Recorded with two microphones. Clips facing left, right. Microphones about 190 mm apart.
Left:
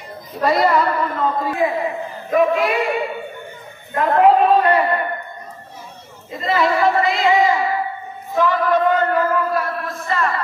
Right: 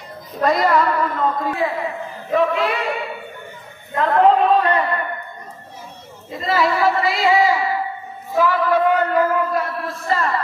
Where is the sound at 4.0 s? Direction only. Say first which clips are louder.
Left 1 dB; 10° left (ahead or behind).